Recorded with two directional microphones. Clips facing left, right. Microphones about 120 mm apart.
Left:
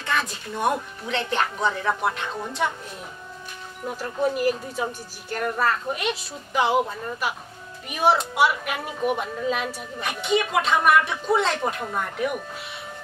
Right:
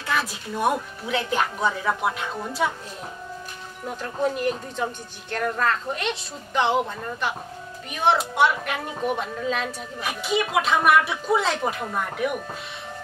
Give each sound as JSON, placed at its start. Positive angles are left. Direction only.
{"t": 0.0, "sound": "a woman's voice", "side_deg": -5}
{"t": 3.8, "sound": "a woman's voice", "side_deg": 5}